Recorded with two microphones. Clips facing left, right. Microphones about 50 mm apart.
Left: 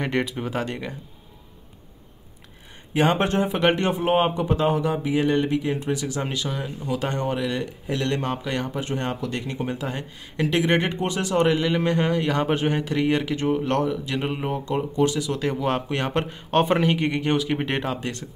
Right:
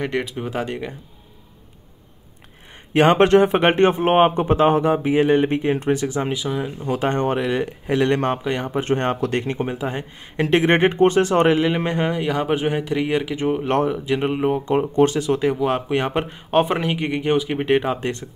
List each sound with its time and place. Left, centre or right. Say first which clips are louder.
0.0 s speech: right 1 dB; centre
2.9 s speech: right 7 dB; right
3.5 s speech: right 5 dB; right
5.5 s speech: right 4 dB; right
6.1 s speech: right 5 dB; centre
6.8 s speech: right 5 dB; right
8.5 s speech: right 4 dB; right
8.8 s speech: right 7 dB; right
9.8 s speech: right 4 dB; right
11.5 s speech: right 2 dB; centre
13.7 s speech: right 3 dB; right
14.0 s speech: right 7 dB; centre
14.6 s speech: right 4 dB; right
15.4 s speech: right 4 dB; centre